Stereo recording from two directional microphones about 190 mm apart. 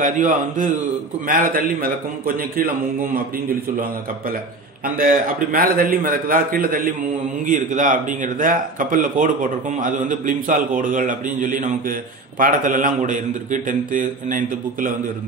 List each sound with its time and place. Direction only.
0.0 s speech: 45° right (ahead or behind)
4.9 s speech: 50° right (ahead or behind)